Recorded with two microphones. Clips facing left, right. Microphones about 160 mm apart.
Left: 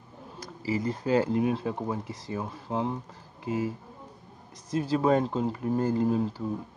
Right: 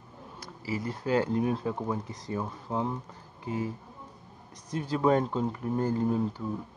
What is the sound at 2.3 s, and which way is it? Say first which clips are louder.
Speech: even; 20° left (ahead or behind).